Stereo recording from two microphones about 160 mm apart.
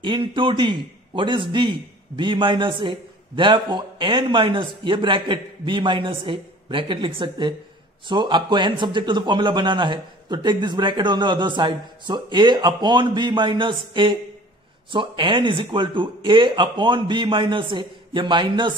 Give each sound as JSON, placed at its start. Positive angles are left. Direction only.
{"t": 0.0, "sound": "a man's voice", "side_deg": -30}